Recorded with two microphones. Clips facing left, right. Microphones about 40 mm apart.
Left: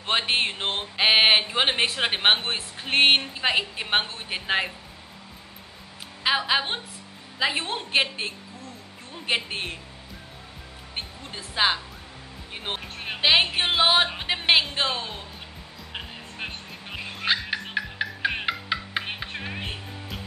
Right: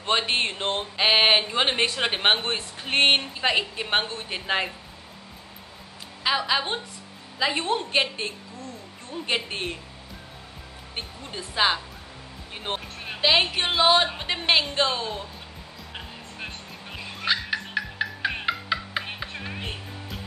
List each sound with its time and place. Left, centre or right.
0.3 s a woman's voice: centre
6.2 s a woman's voice: centre
11.0 s a woman's voice: centre
13.0 s music: left
13.3 s a woman's voice: centre
15.9 s music: left; by 20.2 s centre